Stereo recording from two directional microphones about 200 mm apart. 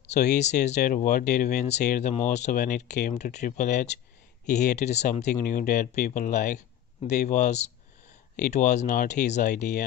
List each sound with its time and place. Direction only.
0.1 s speech: 35° left (ahead or behind)